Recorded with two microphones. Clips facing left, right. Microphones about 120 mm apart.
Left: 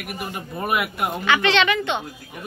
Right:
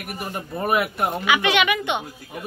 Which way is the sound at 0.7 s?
35° right (ahead or behind).